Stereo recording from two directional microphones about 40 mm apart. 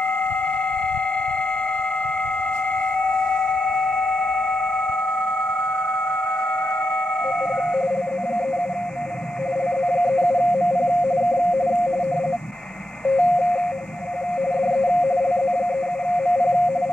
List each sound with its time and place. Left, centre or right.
3.0 s music: left
9.8 s radio: left
13.0 s radio: left
14.6 s telephone dialing: centre
16.1 s radio: left